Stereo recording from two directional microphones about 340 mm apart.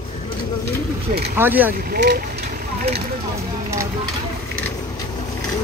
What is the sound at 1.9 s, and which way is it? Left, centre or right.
Speech, right.